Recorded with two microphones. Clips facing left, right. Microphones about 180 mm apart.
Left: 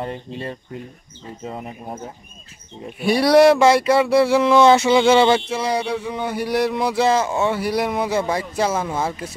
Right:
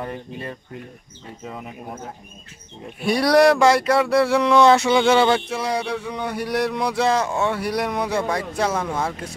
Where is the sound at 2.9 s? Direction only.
Centre (ahead or behind).